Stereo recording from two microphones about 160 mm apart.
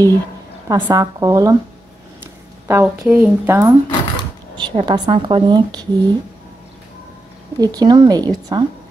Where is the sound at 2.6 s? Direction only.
15° right (ahead or behind).